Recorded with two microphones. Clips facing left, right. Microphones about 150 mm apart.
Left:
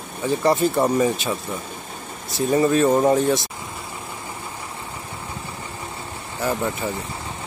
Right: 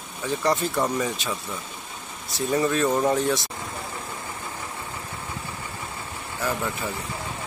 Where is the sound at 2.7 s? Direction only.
20° left (ahead or behind).